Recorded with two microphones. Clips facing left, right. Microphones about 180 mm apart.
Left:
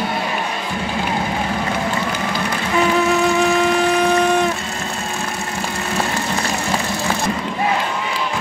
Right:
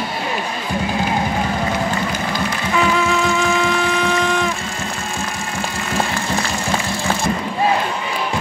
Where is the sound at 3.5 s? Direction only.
40° left (ahead or behind).